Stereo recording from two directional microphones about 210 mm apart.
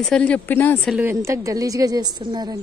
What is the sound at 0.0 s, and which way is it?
Speech, 5° left (ahead or behind).